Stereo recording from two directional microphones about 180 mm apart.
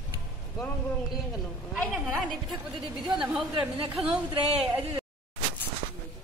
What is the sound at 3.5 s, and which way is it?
Speech, 25° right (ahead or behind).